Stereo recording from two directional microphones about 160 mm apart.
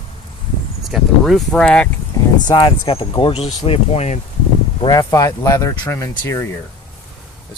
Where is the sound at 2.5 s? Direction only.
30° left (ahead or behind).